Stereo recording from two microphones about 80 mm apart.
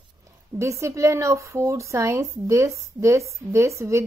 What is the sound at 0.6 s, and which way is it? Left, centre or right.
A woman's voice, right.